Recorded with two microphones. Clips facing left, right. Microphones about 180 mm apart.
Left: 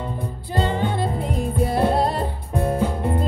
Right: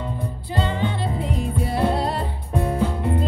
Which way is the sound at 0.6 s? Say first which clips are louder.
Left 2 dB; 45° left (ahead or behind).